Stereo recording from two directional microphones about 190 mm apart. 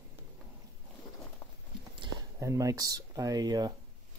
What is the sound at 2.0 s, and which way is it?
Speech, 15° right (ahead or behind).